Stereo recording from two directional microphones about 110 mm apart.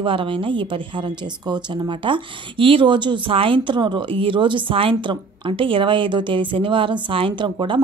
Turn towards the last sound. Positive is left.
turn(degrees=-45)  # may be behind; listen again after turning